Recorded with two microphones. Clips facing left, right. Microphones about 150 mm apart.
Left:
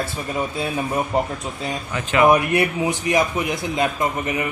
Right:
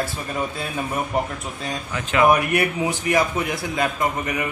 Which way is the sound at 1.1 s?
25° left (ahead or behind).